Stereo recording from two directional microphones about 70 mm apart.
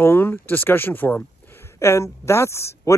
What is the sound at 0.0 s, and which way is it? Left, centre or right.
Speech, left.